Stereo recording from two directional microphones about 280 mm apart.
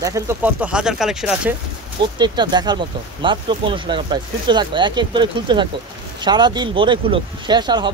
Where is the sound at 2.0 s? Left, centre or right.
Centre.